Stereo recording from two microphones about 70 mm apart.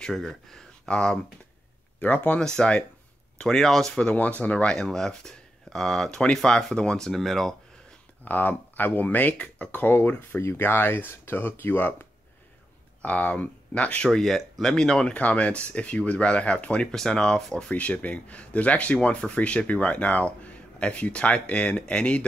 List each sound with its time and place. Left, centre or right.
0.0 s speech: centre
8.2 s speech: left
13.0 s speech: left
17.7 s speech: left